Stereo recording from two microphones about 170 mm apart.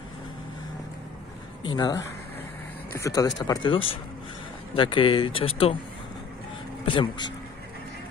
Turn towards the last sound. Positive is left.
turn(degrees=25)  # may be behind; listen again after turning